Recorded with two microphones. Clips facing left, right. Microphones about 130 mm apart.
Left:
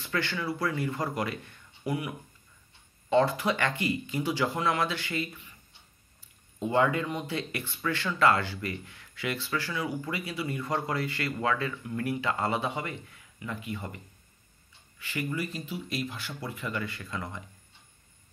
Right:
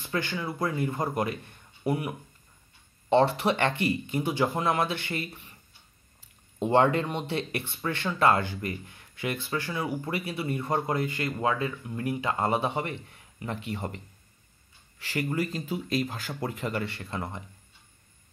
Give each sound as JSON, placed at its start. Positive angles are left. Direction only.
{"t": 0.0, "sound": "speech", "side_deg": -20}
{"t": 3.4, "sound": "speech", "side_deg": -25}
{"t": 6.6, "sound": "speech", "side_deg": -35}
{"t": 13.1, "sound": "a sound", "side_deg": -35}
{"t": 13.7, "sound": "speech", "side_deg": -35}